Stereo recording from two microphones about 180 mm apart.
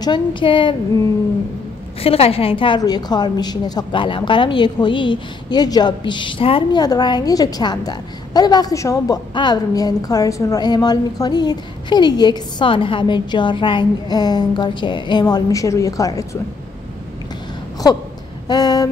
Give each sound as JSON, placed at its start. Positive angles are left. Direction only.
{"t": 0.0, "sound": "a woman's voice", "side_deg": 25}
{"t": 2.0, "sound": "a woman's voice", "side_deg": 35}
{"t": 18.5, "sound": "speech", "side_deg": 20}